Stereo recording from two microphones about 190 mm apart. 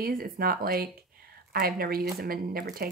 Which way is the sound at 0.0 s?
50° right (ahead or behind).